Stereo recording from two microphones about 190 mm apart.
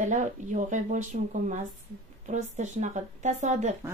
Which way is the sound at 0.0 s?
40° right (ahead or behind).